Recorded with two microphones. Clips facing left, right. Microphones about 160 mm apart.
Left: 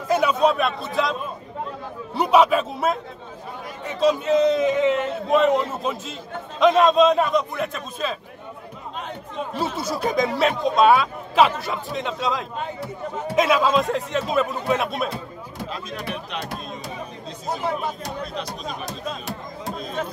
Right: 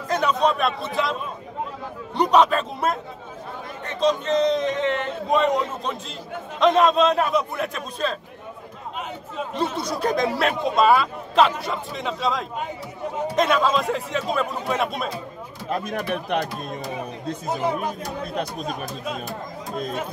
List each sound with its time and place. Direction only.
0.1 s a man's voice: 5° left (ahead or behind)
2.1 s a man's voice: 5° left (ahead or behind)
9.5 s speech: 5° left (ahead or behind)
15.7 s speech: 55° right (ahead or behind)
18.3 s speech: 50° right (ahead or behind)